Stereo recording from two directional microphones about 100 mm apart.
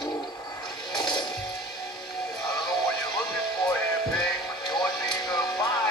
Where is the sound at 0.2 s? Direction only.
40° left (ahead or behind).